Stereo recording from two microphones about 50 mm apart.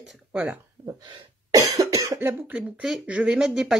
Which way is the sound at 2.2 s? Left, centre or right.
Right.